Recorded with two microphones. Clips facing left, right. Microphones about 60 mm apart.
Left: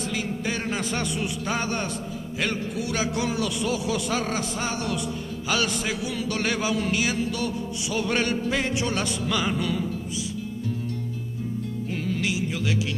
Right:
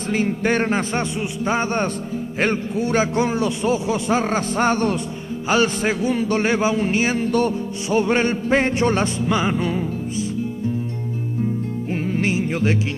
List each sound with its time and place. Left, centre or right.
0.1 s a man's voice: right
11.9 s music: right